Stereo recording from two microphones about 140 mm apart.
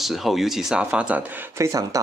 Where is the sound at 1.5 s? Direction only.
25° right (ahead or behind).